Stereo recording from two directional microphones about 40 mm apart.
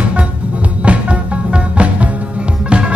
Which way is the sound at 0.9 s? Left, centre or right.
Right.